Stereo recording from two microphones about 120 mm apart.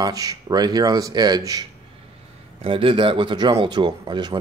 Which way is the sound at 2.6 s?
50° right (ahead or behind).